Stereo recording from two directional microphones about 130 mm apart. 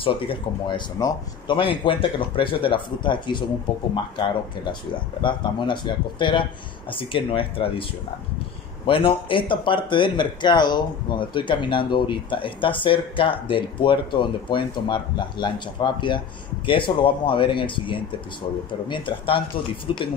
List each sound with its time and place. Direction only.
0.0 s speech: 40° left (ahead or behind)
5.2 s speech: 35° left (ahead or behind)
8.8 s speech: 40° left (ahead or behind)